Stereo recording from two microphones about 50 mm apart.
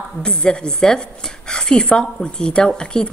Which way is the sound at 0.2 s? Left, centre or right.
Centre.